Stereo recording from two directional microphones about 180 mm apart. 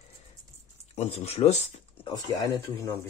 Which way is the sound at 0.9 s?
35° left (ahead or behind).